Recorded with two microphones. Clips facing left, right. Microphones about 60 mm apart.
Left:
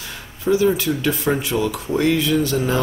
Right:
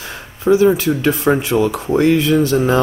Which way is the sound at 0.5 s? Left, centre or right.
Right.